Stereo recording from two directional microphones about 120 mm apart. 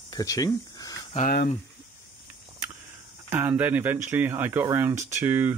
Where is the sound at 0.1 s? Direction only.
30° left (ahead or behind).